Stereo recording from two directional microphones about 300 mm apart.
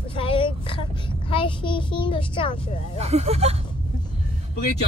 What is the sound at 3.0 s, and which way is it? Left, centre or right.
Speech, centre.